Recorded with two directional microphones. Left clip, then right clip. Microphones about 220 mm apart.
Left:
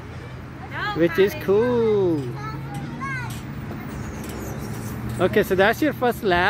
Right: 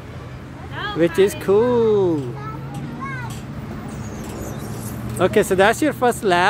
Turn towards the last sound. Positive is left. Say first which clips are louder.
# right 3 dB
turn(degrees=-5)  # may be behind; listen again after turning